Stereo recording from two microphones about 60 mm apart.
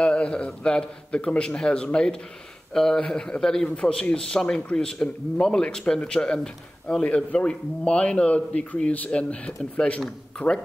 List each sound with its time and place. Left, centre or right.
0.0 s a man's voice: centre
10.4 s speech: left